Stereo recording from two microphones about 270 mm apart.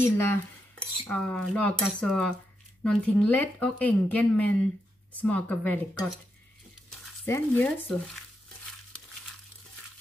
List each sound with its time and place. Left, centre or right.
0.0 s speech: centre
7.2 s speech: centre